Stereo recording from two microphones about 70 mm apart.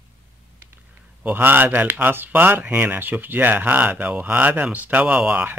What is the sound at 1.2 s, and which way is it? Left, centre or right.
Speech, right.